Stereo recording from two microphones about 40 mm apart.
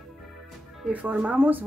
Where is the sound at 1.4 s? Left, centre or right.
Right.